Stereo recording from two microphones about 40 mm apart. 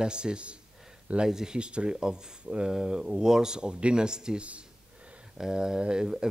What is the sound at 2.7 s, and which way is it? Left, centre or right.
Speech, centre.